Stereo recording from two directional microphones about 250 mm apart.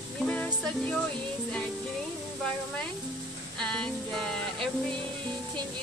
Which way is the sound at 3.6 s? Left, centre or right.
Centre.